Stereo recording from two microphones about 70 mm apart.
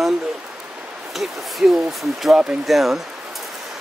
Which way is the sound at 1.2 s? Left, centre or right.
Centre.